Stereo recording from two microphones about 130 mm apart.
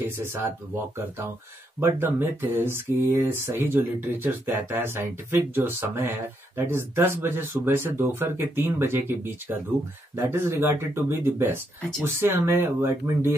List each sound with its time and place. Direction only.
1.8 s speech: 15° right (ahead or behind)